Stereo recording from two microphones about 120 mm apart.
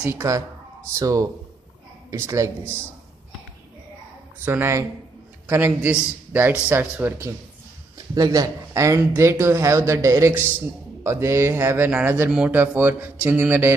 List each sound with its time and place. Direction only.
0.0 s speech: 20° right (ahead or behind)
4.5 s a man's voice: 20° right (ahead or behind)
8.1 s a man's voice: 30° right (ahead or behind)